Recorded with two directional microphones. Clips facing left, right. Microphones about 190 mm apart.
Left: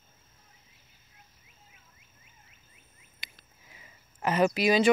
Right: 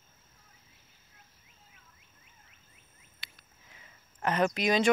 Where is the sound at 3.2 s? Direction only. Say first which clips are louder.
Left 2 dB; 15° left (ahead or behind).